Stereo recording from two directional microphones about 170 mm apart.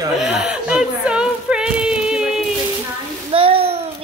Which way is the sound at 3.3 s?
35° right (ahead or behind).